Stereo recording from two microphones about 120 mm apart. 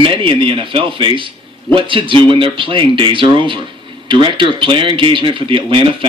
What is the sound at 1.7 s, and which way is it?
Speech, 45° right (ahead or behind).